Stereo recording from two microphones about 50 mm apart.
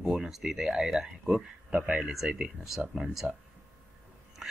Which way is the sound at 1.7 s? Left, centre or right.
Right.